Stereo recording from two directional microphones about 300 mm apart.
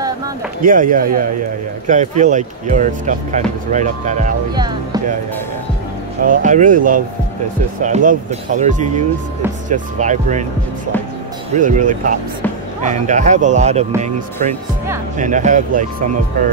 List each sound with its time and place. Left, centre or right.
0.6 s speech: right
4.6 s music: centre
6.2 s speech: right
11.5 s speech: right